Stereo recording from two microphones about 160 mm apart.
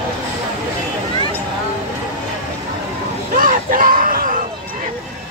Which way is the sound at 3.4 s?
60° right (ahead or behind).